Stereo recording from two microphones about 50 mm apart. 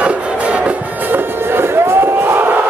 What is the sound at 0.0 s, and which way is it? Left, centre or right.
Music, right.